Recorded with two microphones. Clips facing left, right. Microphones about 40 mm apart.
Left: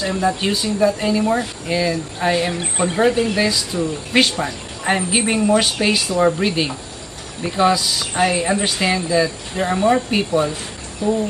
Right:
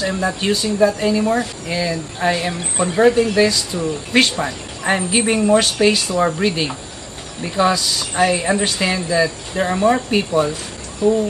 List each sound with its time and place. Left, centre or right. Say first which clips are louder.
0.0 s speech: left 1 dB; centre
11.0 s speech: right 4 dB; centre